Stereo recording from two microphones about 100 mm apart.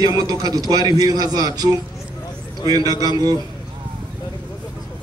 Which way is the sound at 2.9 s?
40° right (ahead or behind).